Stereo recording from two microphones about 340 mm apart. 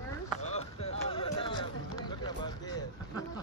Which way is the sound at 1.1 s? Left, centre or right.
Centre.